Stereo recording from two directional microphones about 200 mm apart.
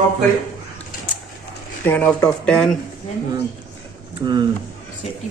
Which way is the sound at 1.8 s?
10° left (ahead or behind).